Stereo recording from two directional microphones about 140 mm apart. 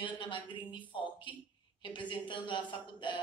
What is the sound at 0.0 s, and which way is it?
A woman's voice, 35° left (ahead or behind).